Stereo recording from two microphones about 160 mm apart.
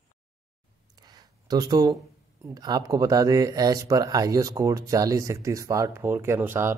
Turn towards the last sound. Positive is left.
turn(degrees=-15)  # may be behind; listen again after turning